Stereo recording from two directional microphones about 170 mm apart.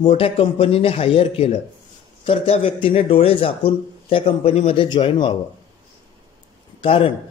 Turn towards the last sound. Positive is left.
turn(degrees=30)  # may be behind; listen again after turning